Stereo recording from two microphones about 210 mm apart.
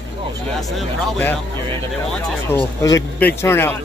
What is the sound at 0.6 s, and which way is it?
Speech, 5° left (ahead or behind).